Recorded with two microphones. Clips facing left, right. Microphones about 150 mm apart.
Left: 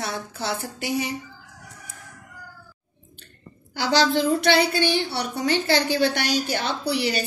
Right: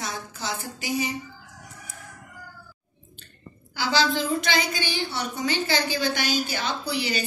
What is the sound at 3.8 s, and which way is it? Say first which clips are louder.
A woman's voice: left 4 dB; 65° left (ahead or behind).